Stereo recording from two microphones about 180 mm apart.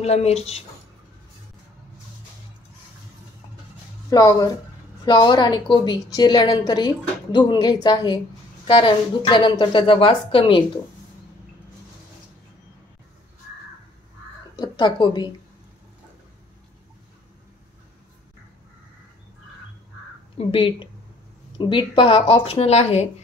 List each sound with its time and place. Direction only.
0.0 s a woman's voice: 35° left (ahead or behind)
4.1 s a woman's voice: 20° left (ahead or behind)
14.6 s a woman's voice: 25° left (ahead or behind)
20.3 s a woman's voice: 30° left (ahead or behind)